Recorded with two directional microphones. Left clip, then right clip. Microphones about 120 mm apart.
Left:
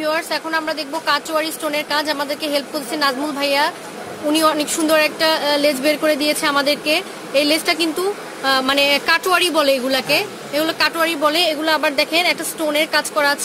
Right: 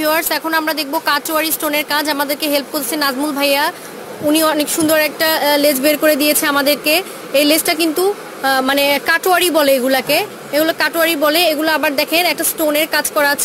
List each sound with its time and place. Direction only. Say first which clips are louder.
0.0 s speech: right 4 dB; 75° right (ahead or behind); by 13.4 s 50° right (ahead or behind)